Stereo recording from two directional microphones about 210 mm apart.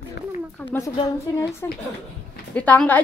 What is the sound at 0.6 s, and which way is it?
A woman's voice, 10° left (ahead or behind).